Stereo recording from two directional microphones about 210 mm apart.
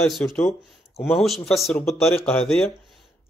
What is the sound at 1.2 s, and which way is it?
A man's voice, centre (ahead or behind).